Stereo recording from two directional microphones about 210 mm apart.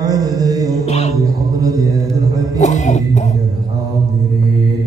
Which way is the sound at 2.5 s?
35° left (ahead or behind).